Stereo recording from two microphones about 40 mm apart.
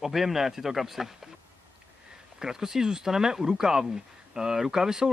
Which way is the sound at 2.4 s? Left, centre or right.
Centre.